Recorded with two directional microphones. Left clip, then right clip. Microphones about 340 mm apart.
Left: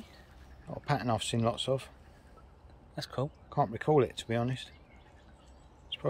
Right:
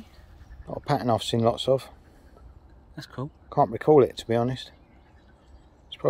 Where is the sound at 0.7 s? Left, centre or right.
Centre.